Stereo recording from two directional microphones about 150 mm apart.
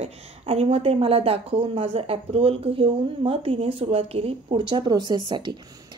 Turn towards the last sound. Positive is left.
turn(degrees=-30)  # may be behind; listen again after turning